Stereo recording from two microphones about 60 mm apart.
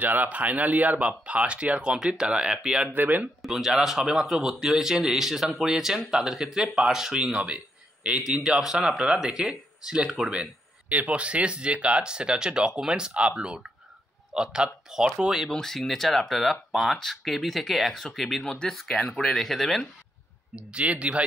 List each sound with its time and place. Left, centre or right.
0.0 s speech: right; by 2.8 s centre
2.8 s speech: right
3.4 s speech: centre
7.3 s a sound: centre
8.2 s speech: centre
15.5 s speech: centre
20.5 s speech: right